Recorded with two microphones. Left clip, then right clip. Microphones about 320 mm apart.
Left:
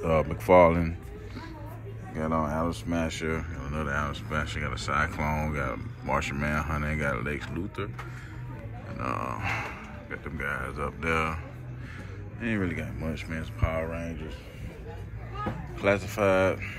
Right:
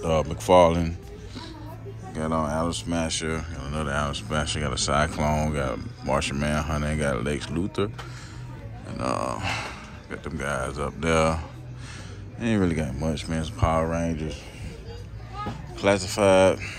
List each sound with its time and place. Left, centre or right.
0.0 s speech: centre
8.9 s speech: centre
15.8 s speech: centre